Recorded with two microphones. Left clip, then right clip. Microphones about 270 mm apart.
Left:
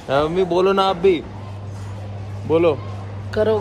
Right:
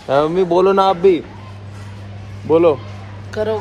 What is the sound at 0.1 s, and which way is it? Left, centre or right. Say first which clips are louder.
A man's voice: right 4 dB; centre.